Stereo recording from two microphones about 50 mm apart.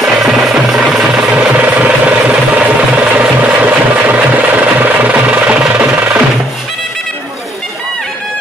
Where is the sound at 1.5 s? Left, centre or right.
Right.